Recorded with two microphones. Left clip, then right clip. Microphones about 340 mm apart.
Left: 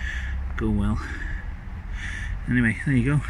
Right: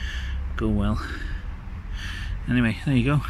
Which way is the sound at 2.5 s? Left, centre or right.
Centre.